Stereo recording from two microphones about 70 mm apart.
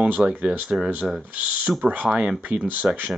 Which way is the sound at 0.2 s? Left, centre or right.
Centre.